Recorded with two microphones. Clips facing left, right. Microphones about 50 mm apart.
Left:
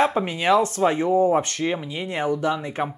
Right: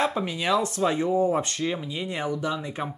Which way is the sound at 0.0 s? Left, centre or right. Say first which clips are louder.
Left 5 dB; left.